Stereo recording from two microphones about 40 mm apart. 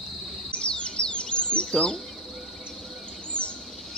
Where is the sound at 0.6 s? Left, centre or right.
Left.